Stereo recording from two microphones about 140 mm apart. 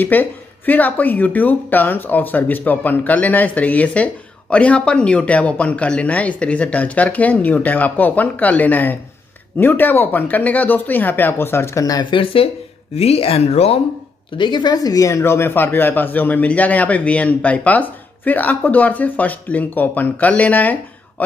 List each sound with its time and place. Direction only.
0.0 s speech: 15° left (ahead or behind); by 13.7 s 50° left (ahead or behind)
14.3 s speech: 35° left (ahead or behind); by 20.7 s 10° left (ahead or behind)